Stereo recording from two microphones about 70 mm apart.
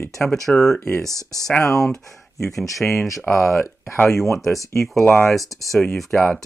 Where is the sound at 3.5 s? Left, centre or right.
Left.